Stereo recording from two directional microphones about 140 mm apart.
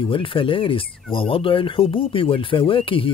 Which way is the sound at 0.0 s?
40° left (ahead or behind).